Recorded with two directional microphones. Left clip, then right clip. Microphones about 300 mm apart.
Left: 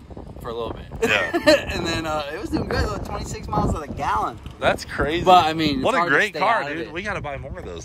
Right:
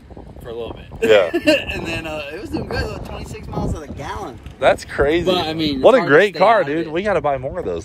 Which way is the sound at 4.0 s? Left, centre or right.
Centre.